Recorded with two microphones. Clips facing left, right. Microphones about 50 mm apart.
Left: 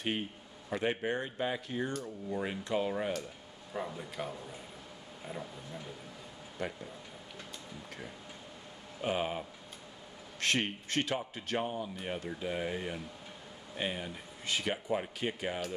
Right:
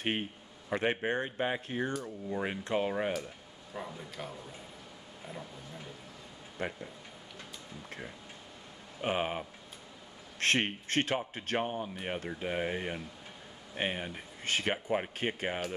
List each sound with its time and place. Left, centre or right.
0.7 s speech: right
1.9 s speech: centre
3.7 s speech: centre
6.6 s speech: right
9.0 s speech: right
10.4 s speech: right
14.4 s speech: right